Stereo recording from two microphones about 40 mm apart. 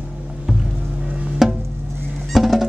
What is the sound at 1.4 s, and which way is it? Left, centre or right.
Music, centre.